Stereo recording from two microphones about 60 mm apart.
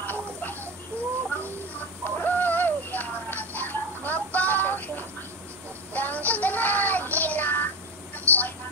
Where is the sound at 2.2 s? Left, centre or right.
Left.